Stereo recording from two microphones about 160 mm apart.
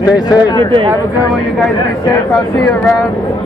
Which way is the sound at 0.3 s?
25° left (ahead or behind).